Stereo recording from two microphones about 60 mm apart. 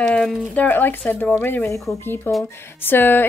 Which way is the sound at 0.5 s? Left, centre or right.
Left.